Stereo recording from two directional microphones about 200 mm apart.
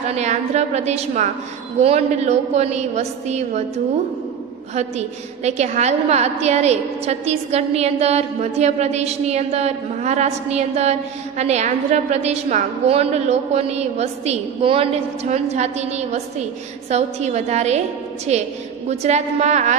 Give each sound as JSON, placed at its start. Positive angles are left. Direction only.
{"t": 0.1, "sound": "a woman's voice", "side_deg": -35}
{"t": 4.7, "sound": "a woman's voice", "side_deg": -35}